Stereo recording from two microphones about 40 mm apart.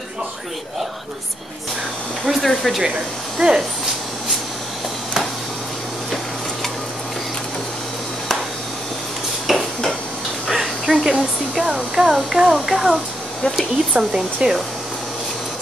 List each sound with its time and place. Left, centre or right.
2.4 s speech: centre
3.3 s speech: centre
9.5 s dishes: centre
10.5 s a sound: centre
11.1 s speech: centre
13.9 s speech: centre